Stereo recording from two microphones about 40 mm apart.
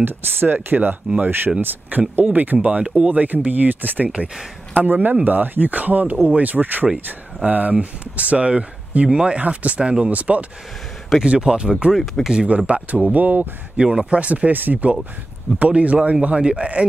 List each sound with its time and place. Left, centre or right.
0.0 s speech: right
9.4 s speech: right
9.8 s speech: right
11.3 s speech: right
11.9 s speech: centre
12.4 s speech: right
13.7 s speech: right
14.2 s speech: right
15.6 s speech: right